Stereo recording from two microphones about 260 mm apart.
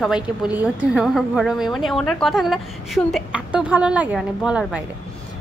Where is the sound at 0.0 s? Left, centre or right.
Centre.